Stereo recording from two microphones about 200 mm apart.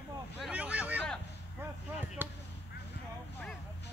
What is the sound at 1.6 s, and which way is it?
Chop, 10° right (ahead or behind).